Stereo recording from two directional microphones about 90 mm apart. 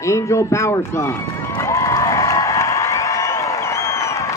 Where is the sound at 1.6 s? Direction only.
35° left (ahead or behind).